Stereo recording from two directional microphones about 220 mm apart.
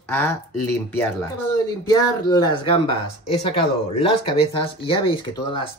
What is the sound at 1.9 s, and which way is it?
Speech, 15° left (ahead or behind).